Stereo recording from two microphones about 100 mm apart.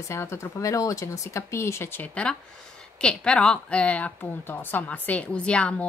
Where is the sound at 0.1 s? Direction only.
25° left (ahead or behind).